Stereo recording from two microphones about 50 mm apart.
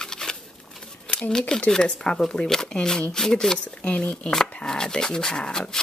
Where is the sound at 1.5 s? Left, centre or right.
Centre.